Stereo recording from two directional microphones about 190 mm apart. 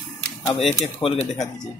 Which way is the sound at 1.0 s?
30° left (ahead or behind).